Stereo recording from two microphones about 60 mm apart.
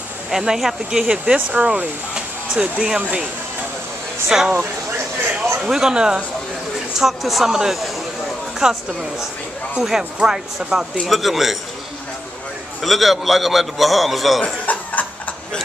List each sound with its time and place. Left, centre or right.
0.3 s speech: centre; by 1.9 s right
2.1 s hair dryer: centre
4.3 s a man's voice: centre
11.1 s a man's voice: centre
12.8 s a man's voice: centre
14.4 s chuckle: left